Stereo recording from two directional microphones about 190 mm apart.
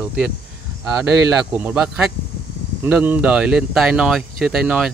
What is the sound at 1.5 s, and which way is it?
Speech, 5° right (ahead or behind).